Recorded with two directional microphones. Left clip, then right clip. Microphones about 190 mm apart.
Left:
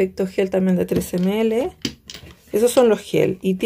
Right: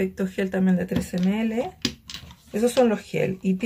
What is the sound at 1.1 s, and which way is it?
Speech, 40° left (ahead or behind).